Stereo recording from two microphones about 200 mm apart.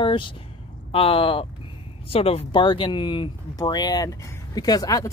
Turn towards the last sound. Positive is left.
turn(degrees=20)  # may be behind; listen again after turning